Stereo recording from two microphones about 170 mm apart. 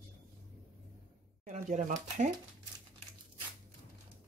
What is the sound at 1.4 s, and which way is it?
Speech, 45° right (ahead or behind).